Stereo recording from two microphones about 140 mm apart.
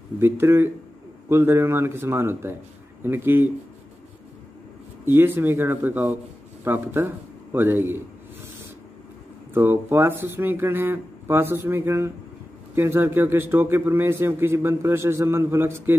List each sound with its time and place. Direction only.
0.2 s a man's voice: 15° right (ahead or behind)
5.0 s a man's voice: 15° right (ahead or behind)
9.5 s a man's voice: 15° right (ahead or behind)